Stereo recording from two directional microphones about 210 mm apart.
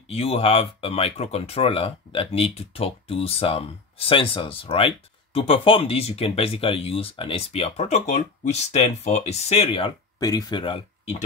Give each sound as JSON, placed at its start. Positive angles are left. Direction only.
{"t": 0.1, "sound": "speech", "side_deg": 30}